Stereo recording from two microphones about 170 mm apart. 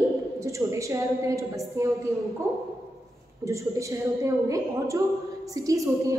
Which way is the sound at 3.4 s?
20° right (ahead or behind).